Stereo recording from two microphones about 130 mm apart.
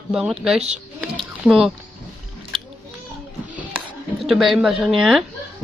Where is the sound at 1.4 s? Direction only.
Centre (ahead or behind).